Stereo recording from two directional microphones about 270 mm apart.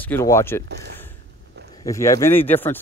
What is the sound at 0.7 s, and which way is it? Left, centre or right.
Speech, right.